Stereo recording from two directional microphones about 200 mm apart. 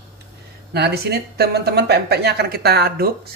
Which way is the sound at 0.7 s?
55° right (ahead or behind).